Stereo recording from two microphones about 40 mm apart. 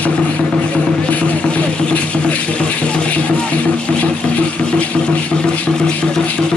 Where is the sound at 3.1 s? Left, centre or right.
Left.